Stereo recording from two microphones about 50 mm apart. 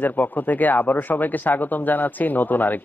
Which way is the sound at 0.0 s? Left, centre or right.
Left.